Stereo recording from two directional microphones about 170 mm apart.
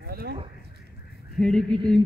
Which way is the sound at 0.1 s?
65° right (ahead or behind).